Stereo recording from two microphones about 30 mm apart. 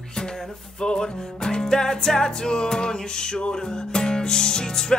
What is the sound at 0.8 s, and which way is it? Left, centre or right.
Music, left.